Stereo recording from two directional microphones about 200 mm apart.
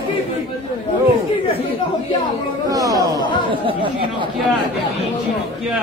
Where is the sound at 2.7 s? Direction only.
15° right (ahead or behind).